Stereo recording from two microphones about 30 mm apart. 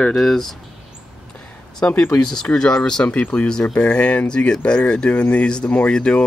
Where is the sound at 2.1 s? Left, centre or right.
Centre.